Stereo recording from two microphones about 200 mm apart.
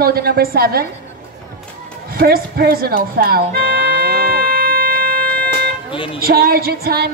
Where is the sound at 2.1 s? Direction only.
50° right (ahead or behind).